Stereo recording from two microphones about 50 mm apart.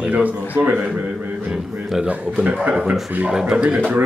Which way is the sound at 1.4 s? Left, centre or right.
Centre.